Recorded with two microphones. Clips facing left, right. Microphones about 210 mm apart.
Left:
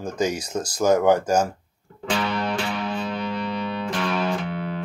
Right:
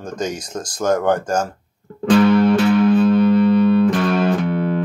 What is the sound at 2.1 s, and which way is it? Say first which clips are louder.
Music: right 13 dB; 50° right (ahead or behind).